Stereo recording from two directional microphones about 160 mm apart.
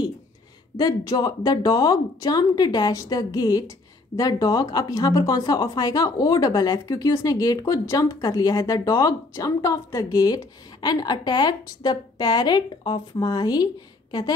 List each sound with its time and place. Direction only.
0.7 s speech: 25° left (ahead or behind)